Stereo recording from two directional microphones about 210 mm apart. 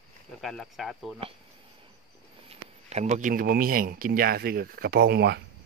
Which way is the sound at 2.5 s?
30° right (ahead or behind).